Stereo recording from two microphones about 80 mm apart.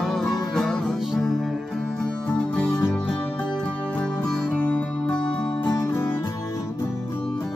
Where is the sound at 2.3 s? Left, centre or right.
Centre.